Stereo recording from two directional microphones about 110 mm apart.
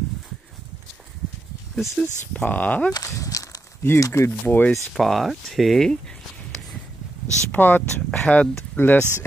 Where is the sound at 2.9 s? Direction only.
30° left (ahead or behind).